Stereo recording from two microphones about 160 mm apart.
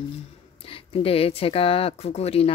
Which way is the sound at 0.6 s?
35° left (ahead or behind).